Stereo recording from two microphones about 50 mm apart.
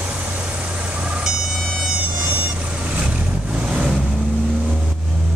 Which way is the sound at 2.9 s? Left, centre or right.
Right.